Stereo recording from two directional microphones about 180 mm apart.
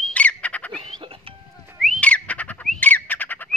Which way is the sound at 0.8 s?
30° right (ahead or behind).